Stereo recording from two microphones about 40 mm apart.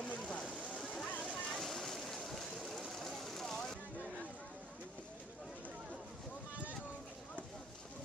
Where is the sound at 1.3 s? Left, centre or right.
Centre.